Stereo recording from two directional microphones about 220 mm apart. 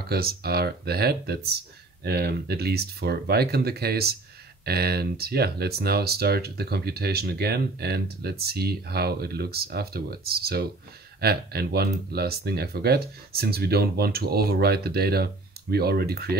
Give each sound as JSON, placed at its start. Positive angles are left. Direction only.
{"t": 0.1, "sound": "speech", "side_deg": -45}